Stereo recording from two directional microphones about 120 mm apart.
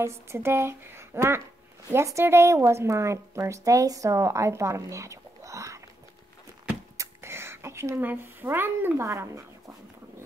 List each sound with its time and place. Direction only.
0.0 s a woman's voice: 20° right (ahead or behind)
7.0 s speech: 20° right (ahead or behind)